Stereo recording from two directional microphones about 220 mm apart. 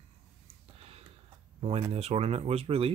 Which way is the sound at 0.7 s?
25° right (ahead or behind).